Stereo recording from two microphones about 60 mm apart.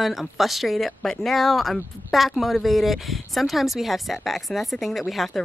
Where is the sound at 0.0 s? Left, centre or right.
Centre.